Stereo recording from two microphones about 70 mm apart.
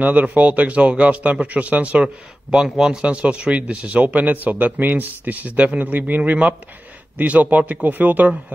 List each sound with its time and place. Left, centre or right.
0.0 s speech: right